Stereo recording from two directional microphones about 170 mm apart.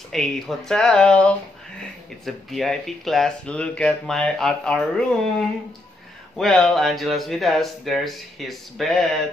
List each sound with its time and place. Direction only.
0.1 s speech: centre (ahead or behind)
6.3 s speech: centre (ahead or behind)